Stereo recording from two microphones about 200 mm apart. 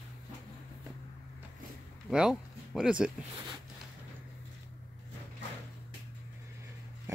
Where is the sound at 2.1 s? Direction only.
5° right (ahead or behind).